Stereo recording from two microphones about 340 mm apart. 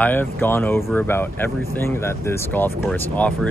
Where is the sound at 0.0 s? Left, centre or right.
Centre.